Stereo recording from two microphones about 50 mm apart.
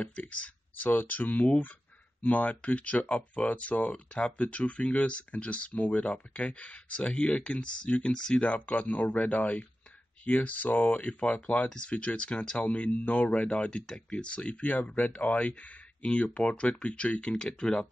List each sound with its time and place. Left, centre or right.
0.0 s speech: left
8.4 s speech: left